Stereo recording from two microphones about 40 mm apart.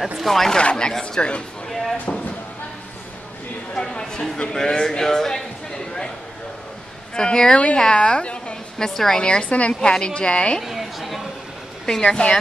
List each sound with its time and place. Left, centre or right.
0.2 s speech: centre
0.5 s a woman's voice: left
1.7 s a sound: centre
3.7 s speech: centre
7.2 s a woman's voice: centre
8.7 s a woman's voice: centre
9.2 s a woman's voice: left
9.8 s a woman's voice: left
10.6 s chatter: centre
12.0 s a woman's voice: left